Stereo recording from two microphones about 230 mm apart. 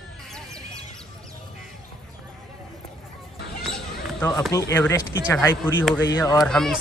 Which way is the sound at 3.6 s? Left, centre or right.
Centre.